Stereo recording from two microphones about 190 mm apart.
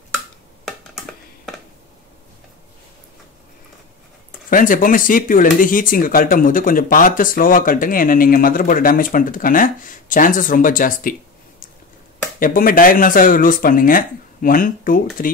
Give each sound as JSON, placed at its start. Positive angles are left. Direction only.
{"t": 0.7, "sound": "a sound", "side_deg": 0}
{"t": 4.5, "sound": "speech", "side_deg": 45}
{"t": 12.4, "sound": "speech", "side_deg": 45}